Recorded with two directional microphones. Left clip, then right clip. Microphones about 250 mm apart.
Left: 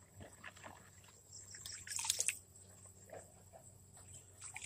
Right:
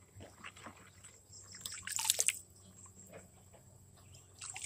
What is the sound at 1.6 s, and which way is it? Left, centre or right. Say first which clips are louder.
Drip: right 5 dB; right.